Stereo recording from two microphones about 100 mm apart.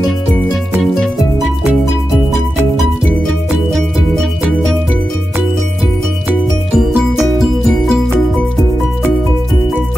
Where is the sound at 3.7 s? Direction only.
5° left (ahead or behind).